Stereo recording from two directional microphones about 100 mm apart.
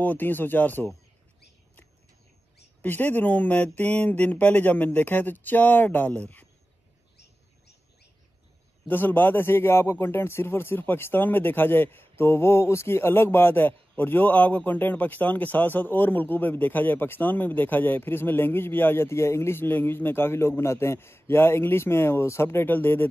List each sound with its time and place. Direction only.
0.0 s a man's voice: 15° left (ahead or behind)
2.8 s speech: 20° left (ahead or behind)
8.8 s a man's voice: 20° left (ahead or behind)